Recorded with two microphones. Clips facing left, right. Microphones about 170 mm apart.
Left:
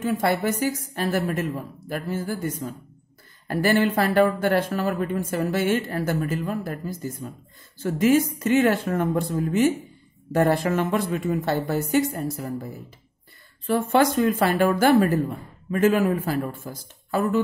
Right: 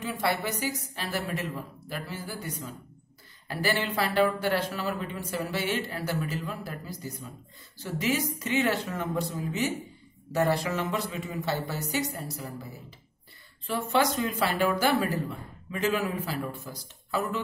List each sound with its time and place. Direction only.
0.0 s speech: 45° left (ahead or behind)
13.7 s speech: 50° left (ahead or behind)